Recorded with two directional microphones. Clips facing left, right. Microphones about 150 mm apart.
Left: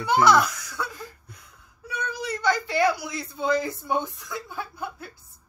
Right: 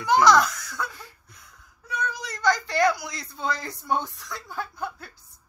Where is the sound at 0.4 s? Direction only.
15° left (ahead or behind).